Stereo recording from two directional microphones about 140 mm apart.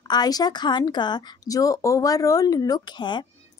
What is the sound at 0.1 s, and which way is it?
A woman's voice, 30° left (ahead or behind).